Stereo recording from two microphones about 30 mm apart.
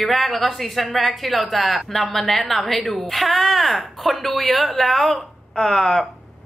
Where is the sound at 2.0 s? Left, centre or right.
Centre.